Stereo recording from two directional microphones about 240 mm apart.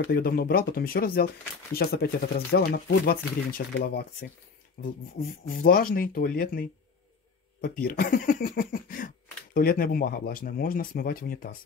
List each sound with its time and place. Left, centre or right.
0.1 s speech: left